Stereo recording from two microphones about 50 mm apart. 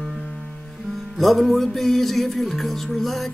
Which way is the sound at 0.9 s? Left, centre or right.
Centre.